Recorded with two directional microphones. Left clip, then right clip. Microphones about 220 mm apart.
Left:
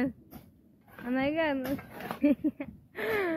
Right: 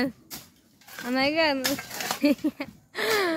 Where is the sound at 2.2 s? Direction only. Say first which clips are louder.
Right 2 dB; 20° right (ahead or behind).